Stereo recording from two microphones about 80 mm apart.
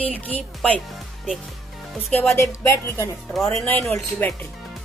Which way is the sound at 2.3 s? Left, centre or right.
Left.